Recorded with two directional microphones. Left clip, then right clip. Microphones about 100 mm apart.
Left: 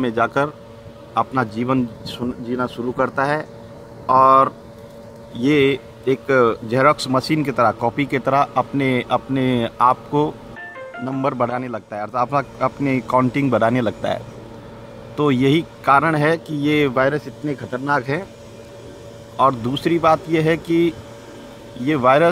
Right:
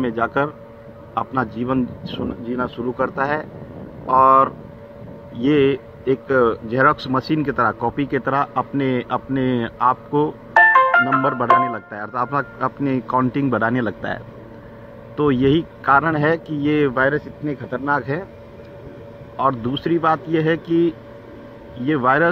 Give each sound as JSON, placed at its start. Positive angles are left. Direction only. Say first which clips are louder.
{"t": 0.0, "sound": "speech", "louder": "left 1 dB", "side_deg": 35}
{"t": 19.3, "sound": "speech", "louder": "left 3 dB", "side_deg": 35}